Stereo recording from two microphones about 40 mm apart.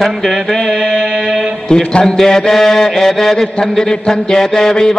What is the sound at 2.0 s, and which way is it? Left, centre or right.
Mantra, centre.